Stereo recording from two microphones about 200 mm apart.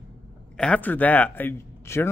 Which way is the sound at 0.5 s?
5° left (ahead or behind).